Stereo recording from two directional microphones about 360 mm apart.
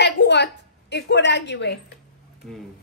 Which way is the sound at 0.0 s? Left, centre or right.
Left.